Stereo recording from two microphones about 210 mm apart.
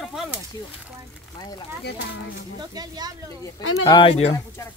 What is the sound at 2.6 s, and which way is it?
Speech, 20° right (ahead or behind).